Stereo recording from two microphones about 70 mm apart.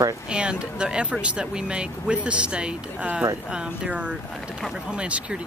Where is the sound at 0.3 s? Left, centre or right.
Centre.